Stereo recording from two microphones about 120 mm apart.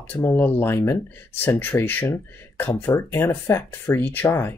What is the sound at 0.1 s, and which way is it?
Speech, 20° left (ahead or behind).